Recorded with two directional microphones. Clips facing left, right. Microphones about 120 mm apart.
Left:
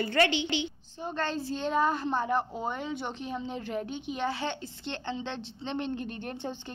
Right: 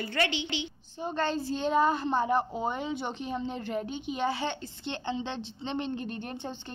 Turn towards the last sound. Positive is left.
turn(degrees=10)  # may be behind; listen again after turning